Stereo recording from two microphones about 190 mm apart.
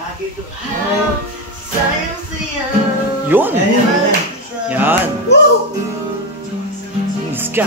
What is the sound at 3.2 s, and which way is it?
Speech, 10° right (ahead or behind).